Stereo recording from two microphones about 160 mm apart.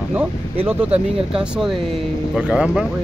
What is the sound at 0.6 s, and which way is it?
Speech, 5° right (ahead or behind).